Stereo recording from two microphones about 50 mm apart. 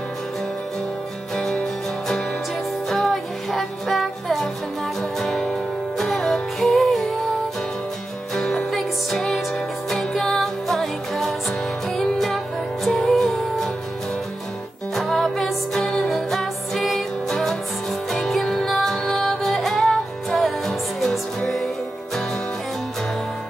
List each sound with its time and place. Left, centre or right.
1.3 s music: centre
8.4 s music: centre
8.7 s music: centre
15.0 s music: centre